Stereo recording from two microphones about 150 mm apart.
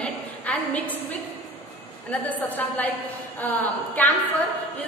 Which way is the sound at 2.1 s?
10° left (ahead or behind).